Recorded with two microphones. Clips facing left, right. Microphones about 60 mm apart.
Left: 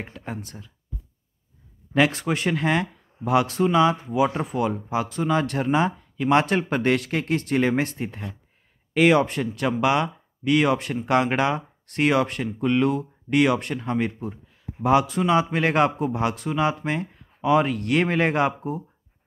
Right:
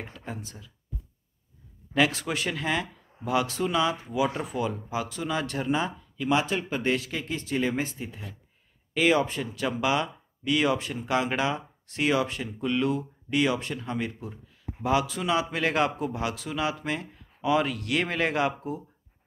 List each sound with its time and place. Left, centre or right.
0.0 s speech: left
2.0 s speech: left
8.9 s speech: left